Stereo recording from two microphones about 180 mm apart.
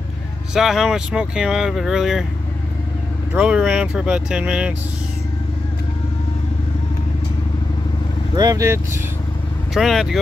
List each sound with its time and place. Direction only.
0.6 s speech: centre (ahead or behind)
3.3 s speech: 5° right (ahead or behind)
8.4 s speech: 20° right (ahead or behind)
9.8 s speech: centre (ahead or behind)